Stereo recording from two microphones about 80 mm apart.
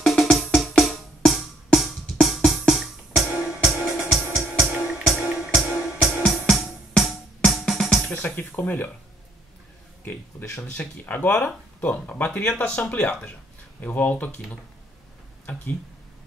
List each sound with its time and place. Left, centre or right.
0.0 s music: centre
8.4 s speech: left
10.7 s speech: left
15.5 s speech: left